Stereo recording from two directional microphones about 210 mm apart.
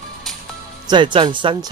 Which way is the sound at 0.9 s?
20° right (ahead or behind).